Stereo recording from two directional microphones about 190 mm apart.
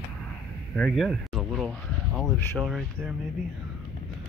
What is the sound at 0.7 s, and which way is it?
Speech, centre (ahead or behind).